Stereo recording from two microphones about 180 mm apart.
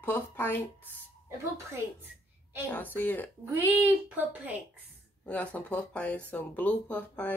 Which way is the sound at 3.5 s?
10° right (ahead or behind).